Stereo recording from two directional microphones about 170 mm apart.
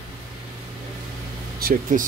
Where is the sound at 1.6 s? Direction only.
50° right (ahead or behind).